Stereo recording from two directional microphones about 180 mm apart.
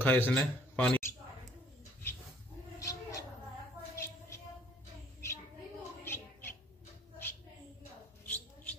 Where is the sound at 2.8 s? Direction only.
20° left (ahead or behind).